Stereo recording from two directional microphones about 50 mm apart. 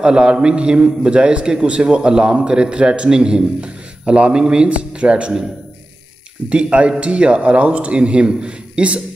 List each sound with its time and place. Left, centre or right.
0.0 s a man's voice: centre
6.5 s a man's voice: right